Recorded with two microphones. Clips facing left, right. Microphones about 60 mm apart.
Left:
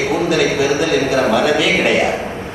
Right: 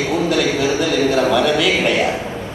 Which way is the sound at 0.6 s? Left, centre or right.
Left.